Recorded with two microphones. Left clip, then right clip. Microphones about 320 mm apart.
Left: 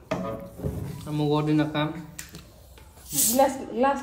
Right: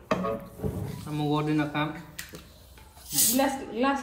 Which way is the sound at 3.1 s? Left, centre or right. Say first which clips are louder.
Left 4 dB; left.